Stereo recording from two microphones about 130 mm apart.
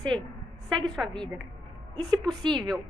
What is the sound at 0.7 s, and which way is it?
Speech, 5° left (ahead or behind).